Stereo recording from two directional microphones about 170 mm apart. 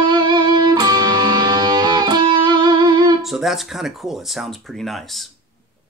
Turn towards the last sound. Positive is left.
turn(degrees=0)  # may be behind; listen again after turning